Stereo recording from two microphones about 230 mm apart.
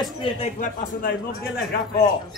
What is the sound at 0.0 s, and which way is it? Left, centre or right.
A man's voice, left.